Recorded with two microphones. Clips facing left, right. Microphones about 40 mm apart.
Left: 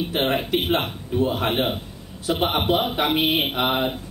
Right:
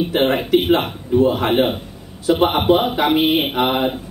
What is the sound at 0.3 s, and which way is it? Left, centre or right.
Speech, centre.